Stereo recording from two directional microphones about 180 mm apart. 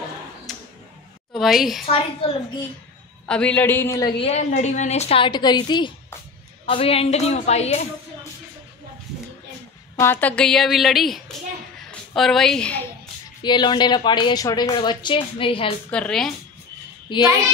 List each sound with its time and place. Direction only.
0.5 s tick-tock: centre (ahead or behind)
1.3 s a woman's voice: centre (ahead or behind)
1.9 s a woman's voice: 35° left (ahead or behind)
3.3 s a man's voice: 5° left (ahead or behind)
4.2 s a woman's voice: 40° left (ahead or behind)
9.9 s a woman's voice: 10° left (ahead or behind)
13.4 s a woman's voice: 25° left (ahead or behind)
15.9 s a woman's voice: 5° left (ahead or behind)
17.1 s a woman's voice: 25° left (ahead or behind)